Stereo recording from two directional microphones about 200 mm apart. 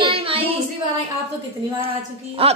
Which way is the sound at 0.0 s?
25° right (ahead or behind).